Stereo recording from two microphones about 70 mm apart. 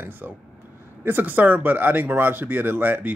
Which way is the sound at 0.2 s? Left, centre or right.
Centre.